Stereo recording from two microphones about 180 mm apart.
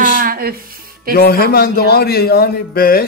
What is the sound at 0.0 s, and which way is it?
Music, 50° right (ahead or behind).